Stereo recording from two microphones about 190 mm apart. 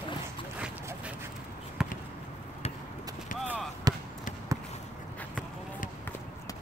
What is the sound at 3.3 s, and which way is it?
Basketball bounce, 5° right (ahead or behind).